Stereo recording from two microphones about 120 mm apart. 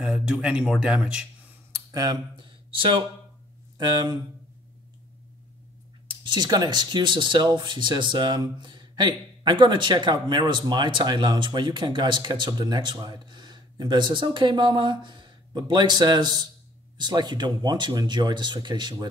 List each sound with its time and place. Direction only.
0.0 s speech: 5° right (ahead or behind)
1.9 s speech: 30° right (ahead or behind)
6.0 s speech: 40° right (ahead or behind)